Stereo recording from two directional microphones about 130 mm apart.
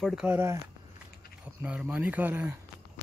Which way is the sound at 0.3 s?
20° right (ahead or behind).